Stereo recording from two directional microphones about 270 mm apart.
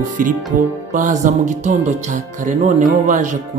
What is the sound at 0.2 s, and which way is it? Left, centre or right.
Speech, right.